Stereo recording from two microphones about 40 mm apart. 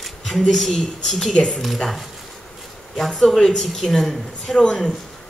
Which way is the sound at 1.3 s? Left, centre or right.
Centre.